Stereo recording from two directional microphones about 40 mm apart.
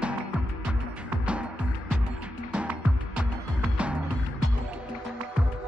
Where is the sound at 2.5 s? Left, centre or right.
Right.